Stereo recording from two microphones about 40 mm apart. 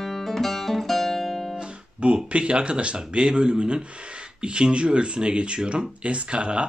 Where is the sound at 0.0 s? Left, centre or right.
Centre.